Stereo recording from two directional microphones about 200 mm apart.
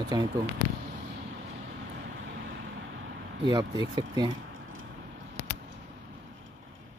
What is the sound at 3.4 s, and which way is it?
Speech, 20° right (ahead or behind).